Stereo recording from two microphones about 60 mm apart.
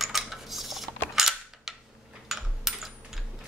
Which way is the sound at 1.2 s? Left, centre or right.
Centre.